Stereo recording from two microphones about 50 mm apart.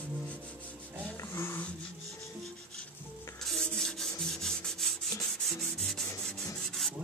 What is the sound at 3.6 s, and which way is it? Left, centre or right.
Rub, centre.